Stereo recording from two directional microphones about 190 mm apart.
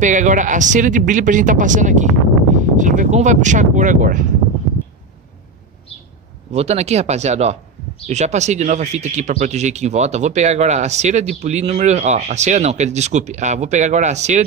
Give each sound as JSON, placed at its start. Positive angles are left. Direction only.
{"t": 0.0, "sound": "speech", "side_deg": -40}
{"t": 6.5, "sound": "speech", "side_deg": -35}